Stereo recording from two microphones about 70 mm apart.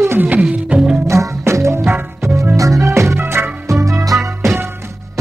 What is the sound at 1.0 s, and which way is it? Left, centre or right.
Music, right.